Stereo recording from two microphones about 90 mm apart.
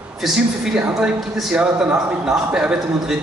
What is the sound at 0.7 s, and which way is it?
A man's voice, 15° right (ahead or behind).